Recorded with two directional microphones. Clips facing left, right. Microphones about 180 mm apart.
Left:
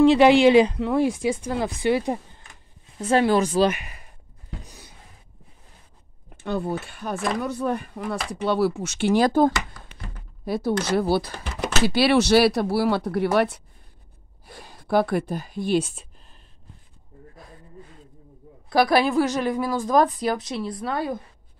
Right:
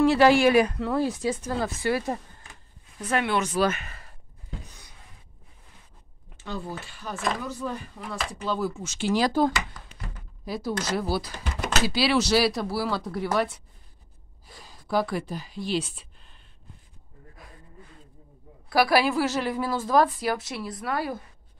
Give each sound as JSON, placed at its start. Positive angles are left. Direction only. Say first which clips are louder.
{"t": 0.0, "sound": "speech", "louder": "left 4 dB", "side_deg": 20}
{"t": 3.6, "sound": "speech", "louder": "left 4 dB", "side_deg": 15}
{"t": 6.3, "sound": "a woman's voice", "louder": "left 8 dB", "side_deg": 60}
{"t": 18.7, "sound": "a woman's voice", "louder": "left 2 dB", "side_deg": 20}